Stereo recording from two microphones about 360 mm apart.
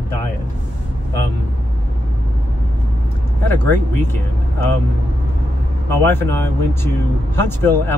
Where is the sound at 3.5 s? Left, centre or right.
Centre.